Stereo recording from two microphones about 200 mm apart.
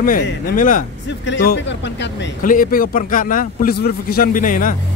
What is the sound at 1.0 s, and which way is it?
Speech, 65° left (ahead or behind).